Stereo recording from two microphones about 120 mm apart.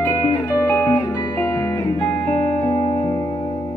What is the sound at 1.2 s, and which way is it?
Music, 30° left (ahead or behind).